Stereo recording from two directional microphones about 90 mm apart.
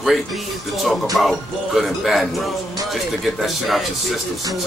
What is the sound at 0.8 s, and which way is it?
Speech, centre (ahead or behind).